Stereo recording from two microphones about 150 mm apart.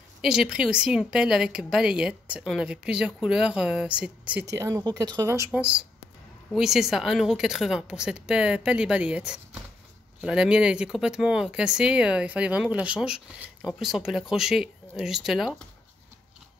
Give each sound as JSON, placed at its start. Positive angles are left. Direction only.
{"t": 0.2, "sound": "speech", "side_deg": -5}
{"t": 4.5, "sound": "speech", "side_deg": -20}
{"t": 5.5, "sound": "speech", "side_deg": -10}